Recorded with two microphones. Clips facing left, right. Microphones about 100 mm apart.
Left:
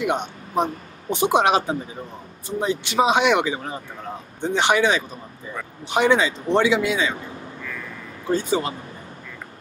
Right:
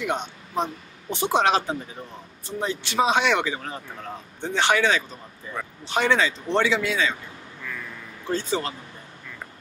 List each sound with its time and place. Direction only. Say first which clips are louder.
0.0 s speech: left 4 dB; 15° left (ahead or behind)
8.3 s speech: left 4 dB; 15° left (ahead or behind)